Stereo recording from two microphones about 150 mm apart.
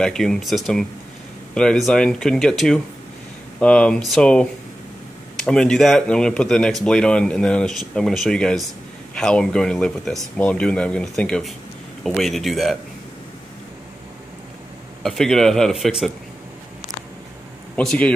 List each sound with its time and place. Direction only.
0.0 s speech: 5° left (ahead or behind)
15.0 s speech: 5° left (ahead or behind)
17.7 s speech: 10° left (ahead or behind)